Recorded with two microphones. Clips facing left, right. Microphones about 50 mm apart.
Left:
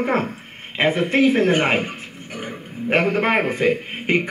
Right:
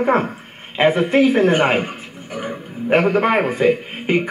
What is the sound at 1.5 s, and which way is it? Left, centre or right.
Speech, centre.